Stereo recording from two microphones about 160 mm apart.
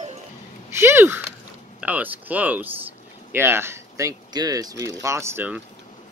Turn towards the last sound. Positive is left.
turn(degrees=-15)  # may be behind; listen again after turning